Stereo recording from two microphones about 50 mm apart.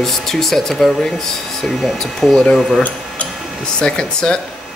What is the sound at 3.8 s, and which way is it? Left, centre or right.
Speech, centre.